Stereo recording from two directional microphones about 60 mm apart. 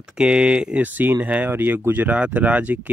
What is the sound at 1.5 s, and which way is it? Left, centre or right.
Speech, right.